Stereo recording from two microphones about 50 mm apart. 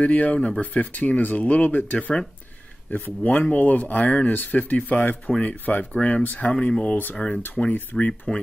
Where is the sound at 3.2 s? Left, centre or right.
Left.